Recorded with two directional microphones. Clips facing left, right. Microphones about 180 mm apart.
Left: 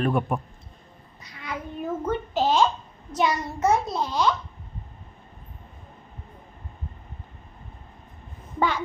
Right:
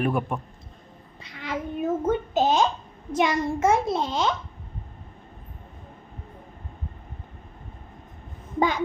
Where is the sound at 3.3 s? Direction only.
50° right (ahead or behind).